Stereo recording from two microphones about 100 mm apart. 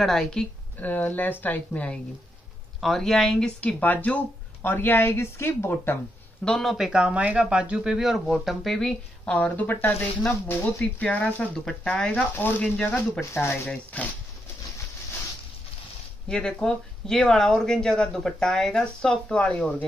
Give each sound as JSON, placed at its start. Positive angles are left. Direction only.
{"t": 0.0, "sound": "speech", "side_deg": 5}
{"t": 2.8, "sound": "speech", "side_deg": 5}
{"t": 6.4, "sound": "speech", "side_deg": 5}
{"t": 13.2, "sound": "speech", "side_deg": 25}
{"t": 13.9, "sound": "speech", "side_deg": 15}
{"t": 16.3, "sound": "speech", "side_deg": 5}